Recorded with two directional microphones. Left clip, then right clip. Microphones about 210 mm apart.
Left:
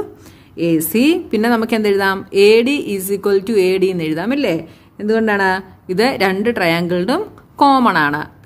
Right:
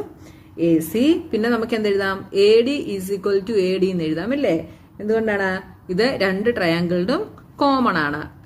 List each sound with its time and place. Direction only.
0.6 s a woman's voice: 50° left (ahead or behind)